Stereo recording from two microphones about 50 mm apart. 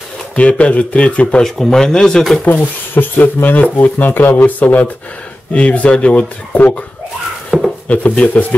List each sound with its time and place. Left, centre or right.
0.4 s speech: left
1.4 s speech: centre
2.4 s speech: left
7.5 s wood: centre
7.9 s speech: left